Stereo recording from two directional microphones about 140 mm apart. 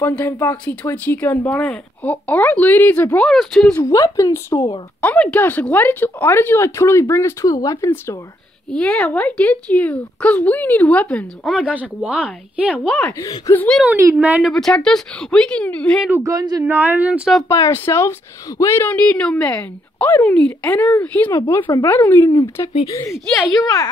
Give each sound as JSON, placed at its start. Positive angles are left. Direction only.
{"t": 0.0, "sound": "a woman's voice", "side_deg": 15}
{"t": 3.7, "sound": "speech", "side_deg": 25}
{"t": 5.0, "sound": "speech", "side_deg": 10}
{"t": 8.6, "sound": "speech", "side_deg": 5}
{"t": 11.4, "sound": "speech", "side_deg": -10}
{"t": 12.7, "sound": "a woman's voice", "side_deg": 5}
{"t": 13.8, "sound": "speech", "side_deg": -20}
{"t": 14.1, "sound": "speech", "side_deg": -10}
{"t": 14.5, "sound": "a woman's voice", "side_deg": 5}
{"t": 16.2, "sound": "speech", "side_deg": -25}
{"t": 16.6, "sound": "speech", "side_deg": -15}
{"t": 17.5, "sound": "speech", "side_deg": 20}
{"t": 21.3, "sound": "speech", "side_deg": 20}